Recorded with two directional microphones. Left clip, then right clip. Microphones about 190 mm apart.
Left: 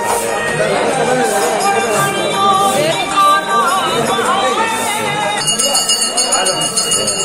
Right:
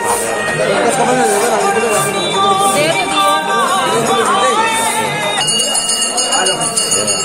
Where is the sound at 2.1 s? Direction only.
15° right (ahead or behind).